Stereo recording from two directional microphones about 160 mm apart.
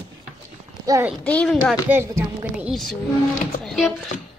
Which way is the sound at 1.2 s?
10° left (ahead or behind).